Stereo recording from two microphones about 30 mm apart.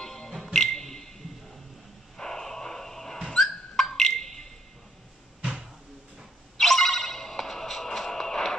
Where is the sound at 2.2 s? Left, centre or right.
Centre.